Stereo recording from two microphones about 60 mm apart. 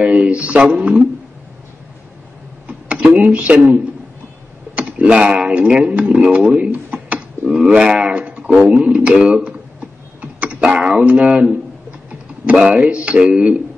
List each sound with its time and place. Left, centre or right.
0.0 s speech: right
3.2 s speech: right
12.5 s speech: centre